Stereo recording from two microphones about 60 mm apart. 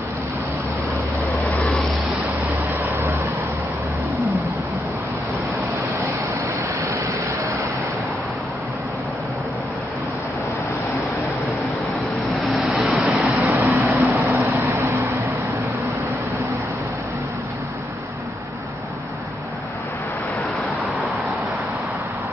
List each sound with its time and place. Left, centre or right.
1.5 s vehicle: left
2.4 s vehicle: right
12.4 s vehicle: centre
13.0 s vehicle: centre
14.1 s vehicle: right